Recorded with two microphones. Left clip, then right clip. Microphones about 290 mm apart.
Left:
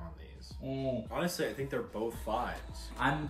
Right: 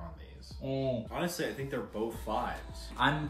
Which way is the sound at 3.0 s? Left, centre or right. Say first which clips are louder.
Right 3 dB; centre.